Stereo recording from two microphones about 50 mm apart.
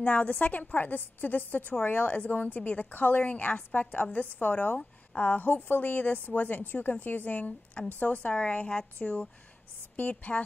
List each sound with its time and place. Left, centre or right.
0.0 s a woman's voice: left
9.9 s a woman's voice: left